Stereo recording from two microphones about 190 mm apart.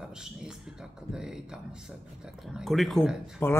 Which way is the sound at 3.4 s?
10° left (ahead or behind).